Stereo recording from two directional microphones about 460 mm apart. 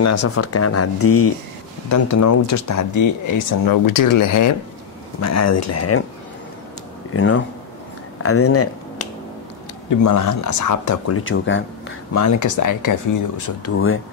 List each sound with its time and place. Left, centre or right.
0.0 s speech: left
7.2 s speech: left
8.2 s finger snapping: left
9.8 s speech: left
12.1 s speech: left
13.7 s speech: left